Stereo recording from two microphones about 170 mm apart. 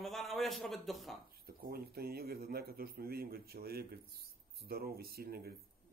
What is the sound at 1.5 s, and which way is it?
A man's voice, 60° right (ahead or behind).